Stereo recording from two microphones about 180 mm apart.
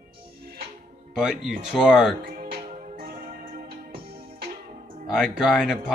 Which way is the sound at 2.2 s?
55° right (ahead or behind).